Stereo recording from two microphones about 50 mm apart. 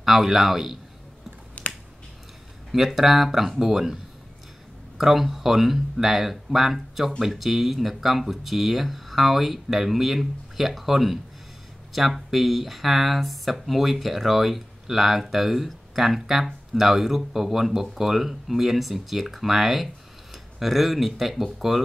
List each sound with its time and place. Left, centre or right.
0.0 s speech: centre
1.6 s finger snapping: left
2.7 s speech: centre